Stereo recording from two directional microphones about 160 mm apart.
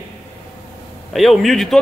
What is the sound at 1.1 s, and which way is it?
Speech, centre (ahead or behind).